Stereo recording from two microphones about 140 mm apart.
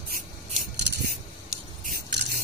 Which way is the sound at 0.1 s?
65° right (ahead or behind).